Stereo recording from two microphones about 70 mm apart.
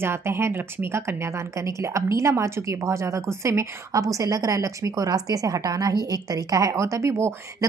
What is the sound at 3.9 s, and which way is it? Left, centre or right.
A woman's voice, right.